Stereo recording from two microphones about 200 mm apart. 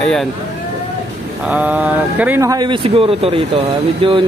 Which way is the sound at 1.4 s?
10° right (ahead or behind).